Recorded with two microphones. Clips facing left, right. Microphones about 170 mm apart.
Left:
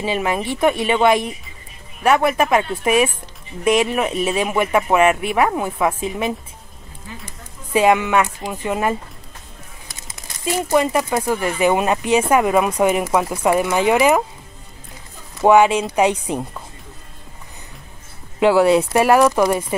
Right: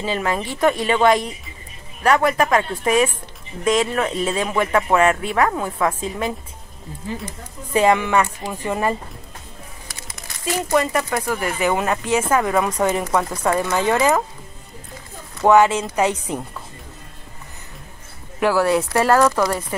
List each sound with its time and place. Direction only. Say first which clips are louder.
0.0 s speech: left 2 dB; 15° left (ahead or behind)
7.7 s speech: left 1 dB; 15° left (ahead or behind)
10.4 s speech: left 2 dB; 20° left (ahead or behind)
15.4 s speech: left 1 dB; 15° left (ahead or behind)
18.4 s speech: left 4 dB; 20° left (ahead or behind)